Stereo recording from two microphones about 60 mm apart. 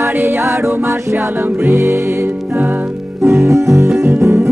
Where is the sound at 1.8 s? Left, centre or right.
Right.